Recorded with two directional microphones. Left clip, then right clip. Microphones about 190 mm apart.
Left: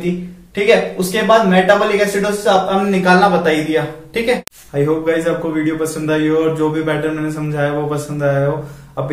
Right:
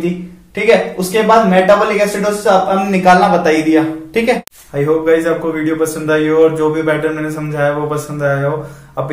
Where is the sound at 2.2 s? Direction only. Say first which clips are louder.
Right 2 dB; 25° right (ahead or behind).